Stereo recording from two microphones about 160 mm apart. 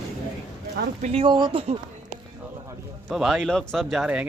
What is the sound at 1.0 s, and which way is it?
Speech, 40° right (ahead or behind).